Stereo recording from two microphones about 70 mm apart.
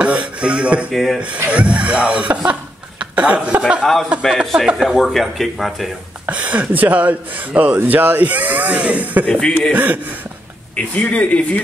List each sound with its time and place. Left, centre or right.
0.0 s a sound: centre
0.9 s speech: centre
1.2 s a woman's voice: centre
3.8 s speech: centre
6.2 s speech: right
9.3 s speech: centre
9.7 s speech: right
10.8 s speech: centre